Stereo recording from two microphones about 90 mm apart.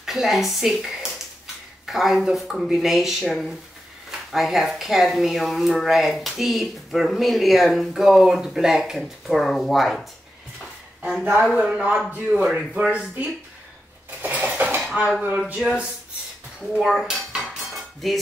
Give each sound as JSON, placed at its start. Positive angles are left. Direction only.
{"t": 0.0, "sound": "speech", "side_deg": -5}
{"t": 11.5, "sound": "speech", "side_deg": -10}
{"t": 14.2, "sound": "dishes", "side_deg": -15}
{"t": 15.3, "sound": "speech", "side_deg": -10}
{"t": 16.8, "sound": "dishes", "side_deg": 0}